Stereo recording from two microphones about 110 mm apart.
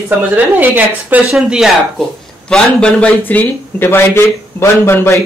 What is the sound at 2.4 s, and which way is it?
Speech, 10° left (ahead or behind).